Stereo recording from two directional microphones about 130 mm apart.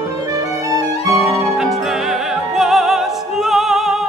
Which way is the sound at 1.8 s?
5° right (ahead or behind).